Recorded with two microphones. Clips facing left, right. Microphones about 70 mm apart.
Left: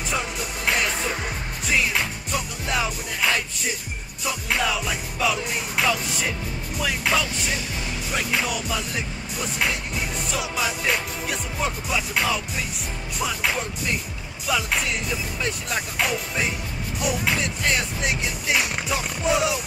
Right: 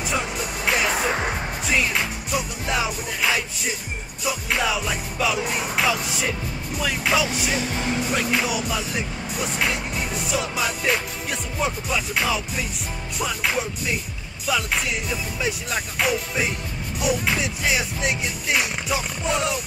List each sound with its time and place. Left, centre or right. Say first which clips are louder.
0.1 s music: even; centre
1.0 s speech: right 4 dB; right
1.7 s music: even; centre